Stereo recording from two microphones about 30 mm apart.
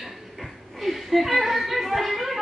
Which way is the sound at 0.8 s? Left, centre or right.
Centre.